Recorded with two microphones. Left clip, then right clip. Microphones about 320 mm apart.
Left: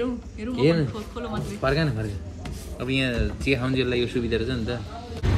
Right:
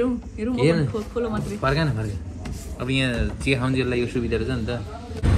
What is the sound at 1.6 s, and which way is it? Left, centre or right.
A man's voice, centre.